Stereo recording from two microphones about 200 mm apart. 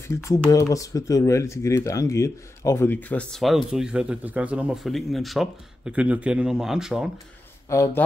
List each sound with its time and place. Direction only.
0.1 s speech: 15° left (ahead or behind); by 7.1 s 5° right (ahead or behind)
7.7 s speech: 15° left (ahead or behind)